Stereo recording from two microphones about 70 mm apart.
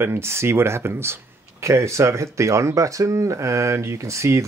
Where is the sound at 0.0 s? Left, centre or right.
Right.